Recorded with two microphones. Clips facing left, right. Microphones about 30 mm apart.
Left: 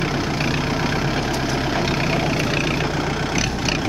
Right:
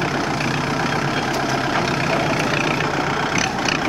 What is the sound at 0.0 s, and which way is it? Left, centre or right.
Vehicle, centre.